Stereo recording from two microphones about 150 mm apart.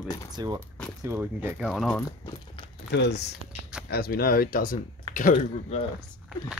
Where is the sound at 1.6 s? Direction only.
Centre (ahead or behind).